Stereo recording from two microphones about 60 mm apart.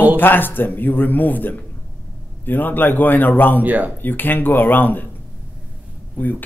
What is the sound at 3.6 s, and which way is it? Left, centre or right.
Speech, right.